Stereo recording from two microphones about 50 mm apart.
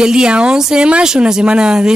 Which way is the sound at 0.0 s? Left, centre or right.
Centre.